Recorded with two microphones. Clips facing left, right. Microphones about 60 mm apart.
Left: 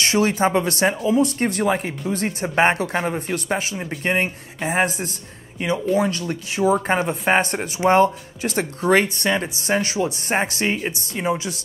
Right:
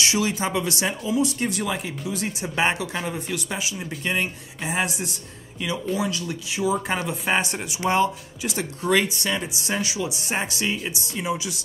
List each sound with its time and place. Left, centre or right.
0.0 s speech: left
3.3 s speech: left